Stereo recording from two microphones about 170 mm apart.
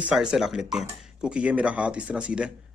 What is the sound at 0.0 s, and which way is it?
Speech, 5° right (ahead or behind).